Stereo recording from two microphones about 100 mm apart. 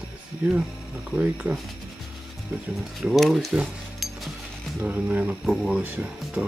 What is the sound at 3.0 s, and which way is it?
Speech, centre (ahead or behind).